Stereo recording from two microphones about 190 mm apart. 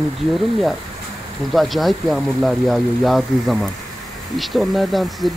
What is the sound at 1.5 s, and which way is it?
Speech, centre (ahead or behind).